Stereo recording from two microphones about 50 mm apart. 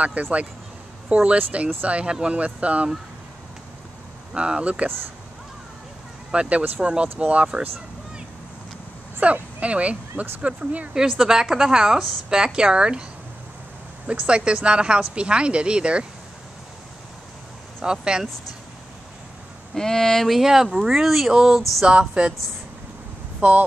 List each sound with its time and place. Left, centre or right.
0.0 s speech: right
4.3 s speech: centre
6.3 s speech: right
9.2 s speech: right
11.1 s a woman's voice: centre
14.0 s speech: right
17.8 s a woman's voice: centre
19.7 s speech: centre
20.3 s a woman's voice: centre
21.8 s speech: right
23.4 s speech: right